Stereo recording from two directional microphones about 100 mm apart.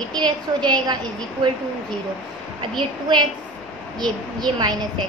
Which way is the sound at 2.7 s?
50° right (ahead or behind).